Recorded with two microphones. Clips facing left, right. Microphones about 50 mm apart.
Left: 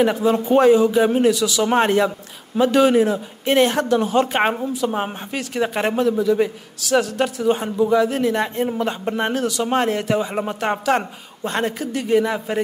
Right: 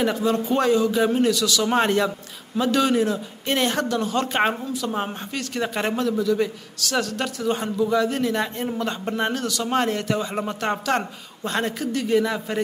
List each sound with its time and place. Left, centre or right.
0.0 s speech: centre
2.5 s speech: centre